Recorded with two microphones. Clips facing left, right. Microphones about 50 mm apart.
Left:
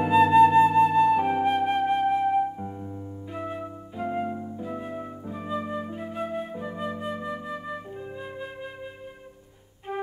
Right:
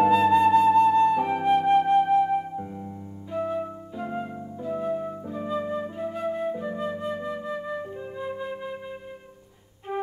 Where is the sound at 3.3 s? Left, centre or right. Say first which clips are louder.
Right 6 dB; centre.